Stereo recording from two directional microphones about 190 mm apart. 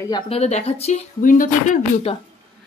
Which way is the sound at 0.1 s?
30° left (ahead or behind).